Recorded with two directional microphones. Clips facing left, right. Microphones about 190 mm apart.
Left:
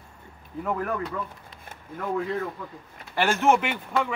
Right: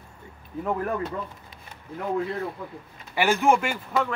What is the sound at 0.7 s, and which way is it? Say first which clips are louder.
Speech: right 1 dB; 25° right (ahead or behind).